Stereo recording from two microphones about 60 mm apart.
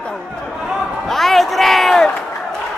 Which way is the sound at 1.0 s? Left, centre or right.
Centre.